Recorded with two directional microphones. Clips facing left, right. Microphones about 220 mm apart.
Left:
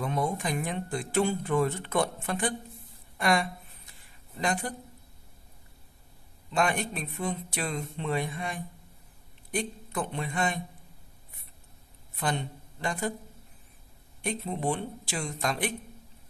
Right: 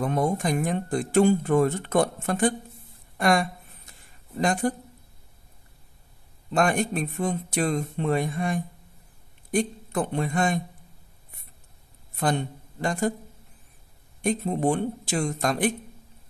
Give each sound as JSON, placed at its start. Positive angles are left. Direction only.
{"t": 0.0, "sound": "a woman's voice", "side_deg": -45}
{"t": 6.5, "sound": "speech", "side_deg": -45}
{"t": 12.2, "sound": "speech", "side_deg": -45}
{"t": 14.2, "sound": "speech", "side_deg": -45}